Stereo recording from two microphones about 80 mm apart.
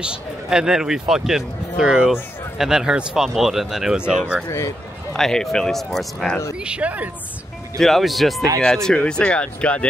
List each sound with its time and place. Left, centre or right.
0.0 s speech: centre
4.5 s speech: left
5.1 s speech: centre
6.6 s speech: centre
7.8 s speech: centre